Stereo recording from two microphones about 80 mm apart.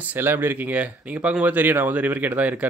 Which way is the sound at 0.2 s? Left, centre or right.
Right.